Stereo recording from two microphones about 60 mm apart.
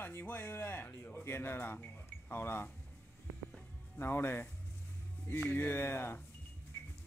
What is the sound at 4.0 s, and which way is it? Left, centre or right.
Speech, left.